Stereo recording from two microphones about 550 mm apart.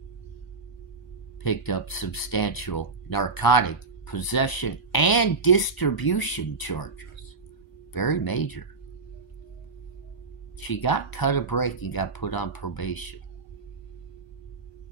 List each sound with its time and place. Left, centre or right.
1.4 s speech: left
10.7 s speech: left